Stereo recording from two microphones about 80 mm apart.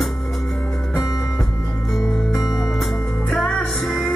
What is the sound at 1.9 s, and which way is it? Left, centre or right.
Music, centre.